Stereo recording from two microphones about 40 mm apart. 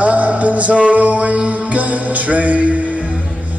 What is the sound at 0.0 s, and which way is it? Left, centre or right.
Music, right.